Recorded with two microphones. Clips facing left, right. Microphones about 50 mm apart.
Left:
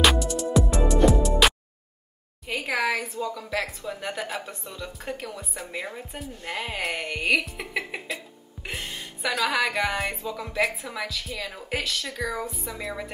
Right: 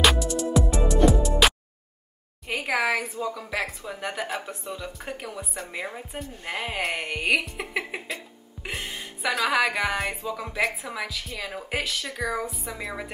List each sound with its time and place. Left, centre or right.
0.0 s music: centre
2.4 s a sound: centre
3.3 s a woman's voice: centre
7.4 s music: centre
8.6 s a woman's voice: centre